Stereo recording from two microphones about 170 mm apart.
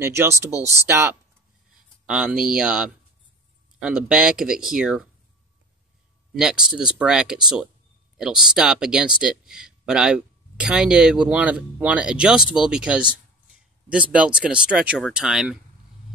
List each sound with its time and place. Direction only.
0.0 s speech: 15° right (ahead or behind)
2.0 s speech: 5° right (ahead or behind)
6.3 s speech: 5° right (ahead or behind)